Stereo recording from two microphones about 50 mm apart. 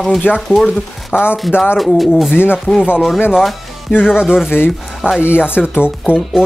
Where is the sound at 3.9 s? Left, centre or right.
Left.